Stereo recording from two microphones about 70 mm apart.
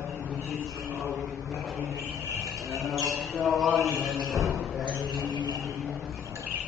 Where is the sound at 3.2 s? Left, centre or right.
Centre.